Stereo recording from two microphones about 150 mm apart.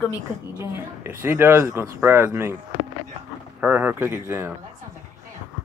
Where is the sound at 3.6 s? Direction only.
10° right (ahead or behind).